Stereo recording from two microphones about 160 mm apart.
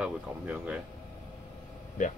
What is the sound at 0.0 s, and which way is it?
Speech, 10° right (ahead or behind).